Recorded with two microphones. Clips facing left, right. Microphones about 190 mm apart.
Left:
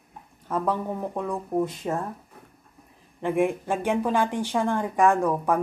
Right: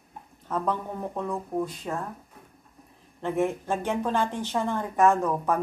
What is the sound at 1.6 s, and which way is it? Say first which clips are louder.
Speech: left 6 dB; 25° left (ahead or behind).